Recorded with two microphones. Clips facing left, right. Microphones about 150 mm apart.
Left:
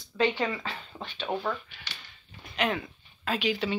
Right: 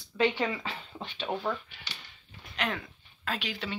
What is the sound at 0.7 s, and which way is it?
Speech, 20° right (ahead or behind).